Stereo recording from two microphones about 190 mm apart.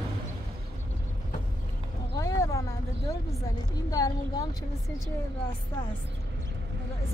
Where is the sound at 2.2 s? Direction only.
15° left (ahead or behind).